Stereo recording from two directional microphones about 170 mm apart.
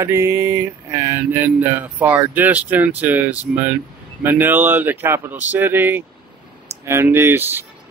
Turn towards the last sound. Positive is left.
turn(degrees=-10)  # may be behind; listen again after turning